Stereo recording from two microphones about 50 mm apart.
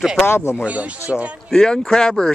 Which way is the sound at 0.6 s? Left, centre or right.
Right.